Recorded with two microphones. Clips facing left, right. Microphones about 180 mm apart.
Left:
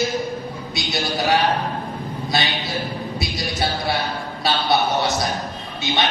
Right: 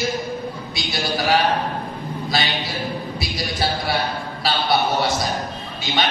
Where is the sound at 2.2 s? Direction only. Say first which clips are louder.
Even; 25° left (ahead or behind).